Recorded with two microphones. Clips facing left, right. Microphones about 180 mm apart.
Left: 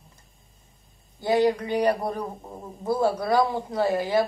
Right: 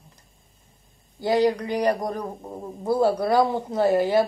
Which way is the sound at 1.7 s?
15° right (ahead or behind).